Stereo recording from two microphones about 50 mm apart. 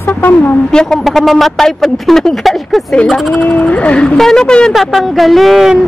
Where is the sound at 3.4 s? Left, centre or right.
Left.